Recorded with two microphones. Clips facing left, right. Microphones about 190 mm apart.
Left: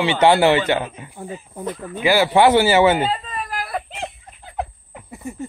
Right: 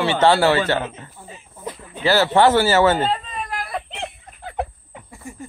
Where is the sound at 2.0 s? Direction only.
10° left (ahead or behind).